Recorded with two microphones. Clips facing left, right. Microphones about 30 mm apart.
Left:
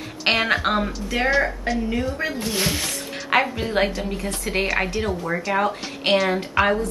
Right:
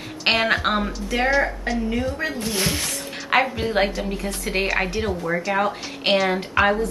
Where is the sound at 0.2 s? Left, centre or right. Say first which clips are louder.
Even; centre.